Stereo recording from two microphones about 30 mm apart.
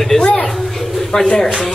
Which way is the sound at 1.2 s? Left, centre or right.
Centre.